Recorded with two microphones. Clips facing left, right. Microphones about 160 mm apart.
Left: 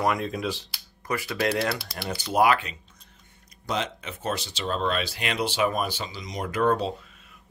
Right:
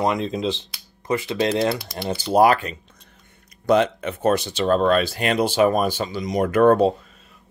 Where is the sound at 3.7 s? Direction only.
55° right (ahead or behind).